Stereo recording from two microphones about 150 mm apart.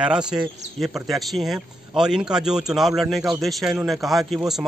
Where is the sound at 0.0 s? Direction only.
5° right (ahead or behind).